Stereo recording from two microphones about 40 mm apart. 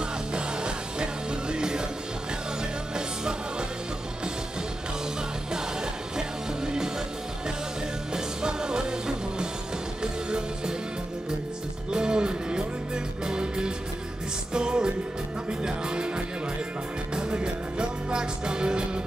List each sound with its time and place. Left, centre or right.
0.3 s music: right
6.1 s music: centre
8.1 s music: centre
11.9 s music: right
17.1 s music: right